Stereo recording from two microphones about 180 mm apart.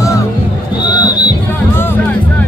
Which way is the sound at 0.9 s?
25° left (ahead or behind).